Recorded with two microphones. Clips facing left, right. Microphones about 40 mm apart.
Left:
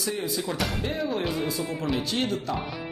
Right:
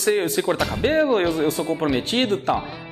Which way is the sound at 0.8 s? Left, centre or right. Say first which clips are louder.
Right 14 dB; right.